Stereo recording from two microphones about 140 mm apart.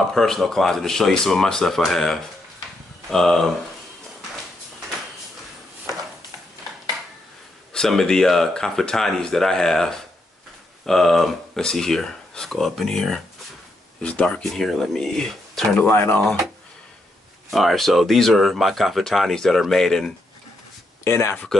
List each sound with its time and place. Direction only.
0.1 s speech: centre (ahead or behind)
7.7 s speech: 5° left (ahead or behind)
17.5 s speech: centre (ahead or behind)
21.0 s speech: 20° left (ahead or behind)